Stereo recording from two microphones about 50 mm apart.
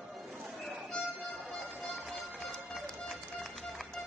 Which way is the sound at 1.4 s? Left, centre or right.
Centre.